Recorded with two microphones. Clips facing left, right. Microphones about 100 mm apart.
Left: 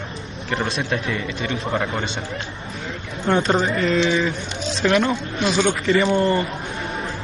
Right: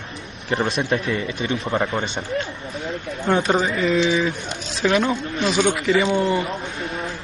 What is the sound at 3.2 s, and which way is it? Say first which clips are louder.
Speech: left 1 dB; 10° right (ahead or behind).